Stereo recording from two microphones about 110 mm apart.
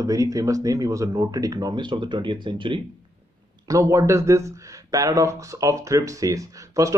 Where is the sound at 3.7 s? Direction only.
30° right (ahead or behind).